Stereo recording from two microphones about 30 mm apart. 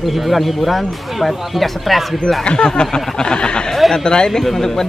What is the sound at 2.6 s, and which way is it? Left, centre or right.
Speech, left.